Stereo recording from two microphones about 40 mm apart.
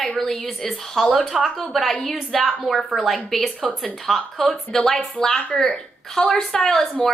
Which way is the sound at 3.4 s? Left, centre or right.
Centre.